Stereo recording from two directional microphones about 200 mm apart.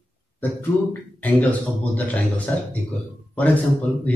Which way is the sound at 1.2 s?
10° left (ahead or behind).